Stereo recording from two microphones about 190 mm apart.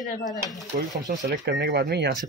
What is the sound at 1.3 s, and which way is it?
Speech, 55° right (ahead or behind).